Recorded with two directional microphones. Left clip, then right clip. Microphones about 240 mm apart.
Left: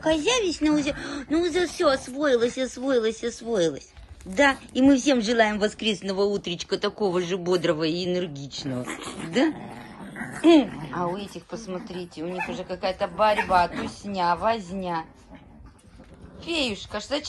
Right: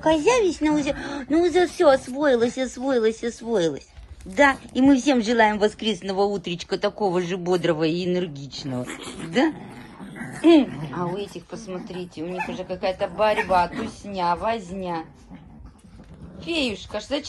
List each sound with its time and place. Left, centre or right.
0.0 s speech: centre
8.6 s speech: left
10.4 s speech: centre
16.5 s speech: left
16.9 s speech: centre